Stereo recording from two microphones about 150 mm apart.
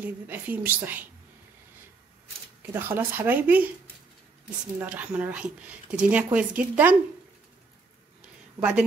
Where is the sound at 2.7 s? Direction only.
15° right (ahead or behind).